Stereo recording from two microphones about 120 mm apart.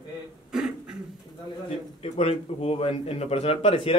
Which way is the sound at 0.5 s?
5° right (ahead or behind).